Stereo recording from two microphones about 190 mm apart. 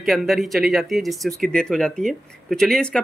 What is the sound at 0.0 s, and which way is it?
Speech, centre (ahead or behind).